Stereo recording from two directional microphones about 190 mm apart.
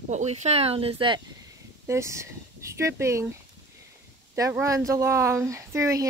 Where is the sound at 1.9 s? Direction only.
15° right (ahead or behind).